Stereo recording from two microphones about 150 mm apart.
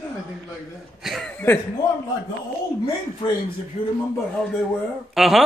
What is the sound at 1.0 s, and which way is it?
Speech, centre (ahead or behind).